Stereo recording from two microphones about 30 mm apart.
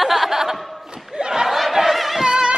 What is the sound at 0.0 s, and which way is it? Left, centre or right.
Chuckle, centre.